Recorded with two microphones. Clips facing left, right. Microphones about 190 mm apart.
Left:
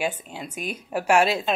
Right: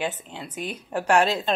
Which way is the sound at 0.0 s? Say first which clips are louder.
Left 2 dB; 10° left (ahead or behind).